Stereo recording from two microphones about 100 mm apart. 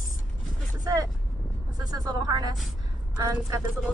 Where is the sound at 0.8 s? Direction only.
35° right (ahead or behind).